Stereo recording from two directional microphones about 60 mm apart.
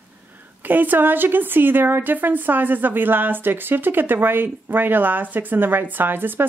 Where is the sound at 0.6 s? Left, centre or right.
Right.